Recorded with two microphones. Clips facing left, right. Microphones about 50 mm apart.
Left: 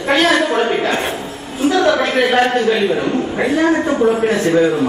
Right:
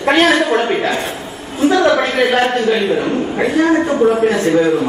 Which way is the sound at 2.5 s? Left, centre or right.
Left.